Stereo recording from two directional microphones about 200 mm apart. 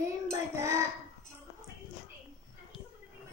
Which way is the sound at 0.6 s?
15° right (ahead or behind).